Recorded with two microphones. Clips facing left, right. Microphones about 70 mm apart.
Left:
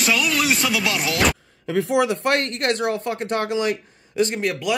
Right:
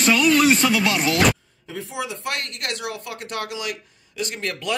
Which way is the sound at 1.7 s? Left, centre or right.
Left.